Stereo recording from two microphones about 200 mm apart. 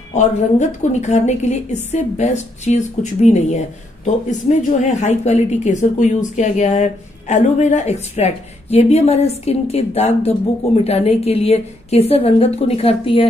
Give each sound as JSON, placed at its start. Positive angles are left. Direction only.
{"t": 0.1, "sound": "a woman's voice", "side_deg": 35}